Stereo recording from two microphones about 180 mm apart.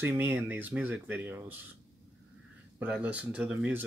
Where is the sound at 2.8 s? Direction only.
10° right (ahead or behind).